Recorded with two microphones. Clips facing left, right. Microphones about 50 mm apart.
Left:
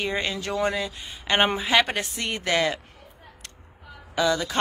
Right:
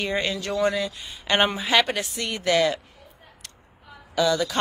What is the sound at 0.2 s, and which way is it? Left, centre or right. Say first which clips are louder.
Speech: right 2 dB; left.